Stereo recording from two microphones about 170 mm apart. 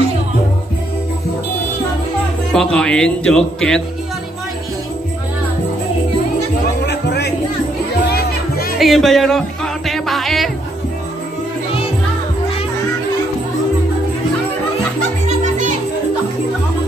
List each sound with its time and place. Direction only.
2.5 s a man's voice: 5° left (ahead or behind)
6.9 s music: 75° left (ahead or behind)
8.7 s music: centre (ahead or behind)
15.2 s music: 45° right (ahead or behind)